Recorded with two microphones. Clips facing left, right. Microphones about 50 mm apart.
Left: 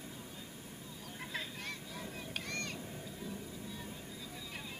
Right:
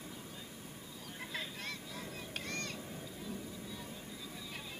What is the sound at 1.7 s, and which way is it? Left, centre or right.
Honk, left.